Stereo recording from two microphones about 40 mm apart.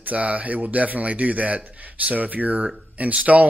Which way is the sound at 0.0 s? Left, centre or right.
Right.